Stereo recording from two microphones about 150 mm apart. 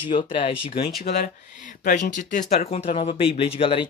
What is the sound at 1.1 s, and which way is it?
Speech, 60° left (ahead or behind).